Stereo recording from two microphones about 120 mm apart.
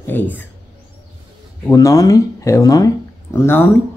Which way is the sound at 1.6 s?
25° left (ahead or behind).